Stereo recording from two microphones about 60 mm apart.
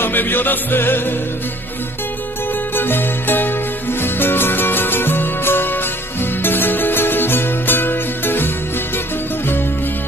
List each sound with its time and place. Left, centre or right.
0.0 s music: left
2.7 s music: left